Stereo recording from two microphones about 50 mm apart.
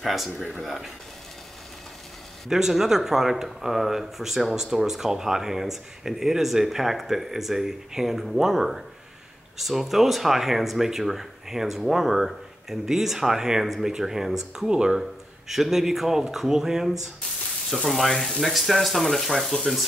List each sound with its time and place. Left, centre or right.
0.0 s speech: centre
2.5 s speech: centre
19.5 s frying: centre